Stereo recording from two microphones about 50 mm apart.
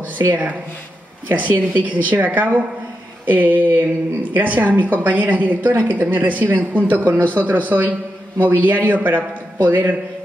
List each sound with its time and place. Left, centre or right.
0.2 s speech: right